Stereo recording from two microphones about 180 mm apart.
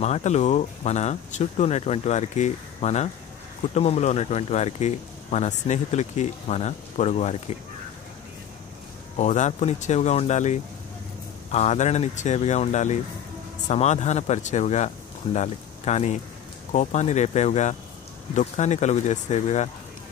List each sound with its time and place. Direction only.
0.0 s speech: 40° left (ahead or behind)
9.2 s speech: 40° left (ahead or behind)